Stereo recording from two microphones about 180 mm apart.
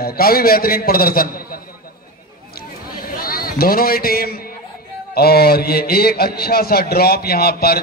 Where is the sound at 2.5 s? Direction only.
55° left (ahead or behind).